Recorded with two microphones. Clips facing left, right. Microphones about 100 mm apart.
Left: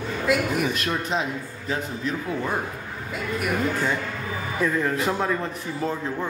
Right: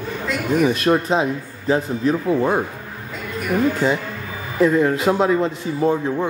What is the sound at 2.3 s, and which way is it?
Speech, 25° right (ahead or behind).